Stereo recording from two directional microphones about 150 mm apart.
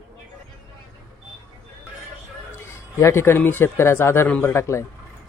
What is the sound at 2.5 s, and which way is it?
Speech, 15° left (ahead or behind).